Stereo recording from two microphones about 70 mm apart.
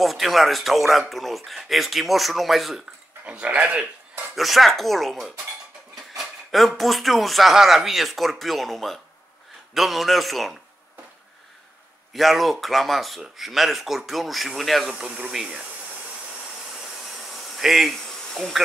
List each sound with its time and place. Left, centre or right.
0.0 s speech: centre
3.3 s speech: centre
4.4 s speech: centre
12.1 s speech: centre
15.0 s speech: centre
17.2 s insect: centre